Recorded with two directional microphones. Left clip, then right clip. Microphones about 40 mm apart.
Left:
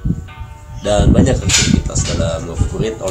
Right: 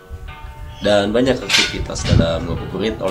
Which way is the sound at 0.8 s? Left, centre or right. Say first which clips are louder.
Even; centre.